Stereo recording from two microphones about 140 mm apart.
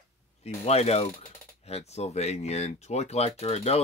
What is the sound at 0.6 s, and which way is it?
Speech, 50° left (ahead or behind).